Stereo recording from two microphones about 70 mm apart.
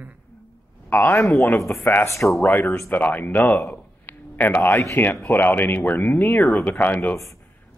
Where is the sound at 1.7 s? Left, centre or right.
Left.